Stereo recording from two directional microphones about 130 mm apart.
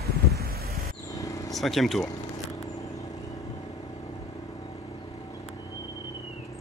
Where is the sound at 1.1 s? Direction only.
25° left (ahead or behind).